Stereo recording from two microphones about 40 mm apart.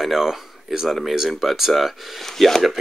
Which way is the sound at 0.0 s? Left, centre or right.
Centre.